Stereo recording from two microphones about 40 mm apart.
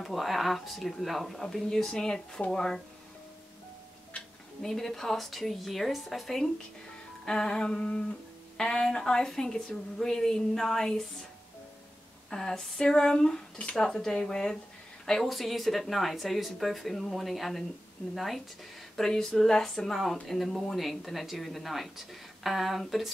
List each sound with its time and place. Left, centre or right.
0.0 s speech: centre
4.6 s speech: centre
7.2 s speech: centre
12.3 s speech: centre
18.9 s speech: centre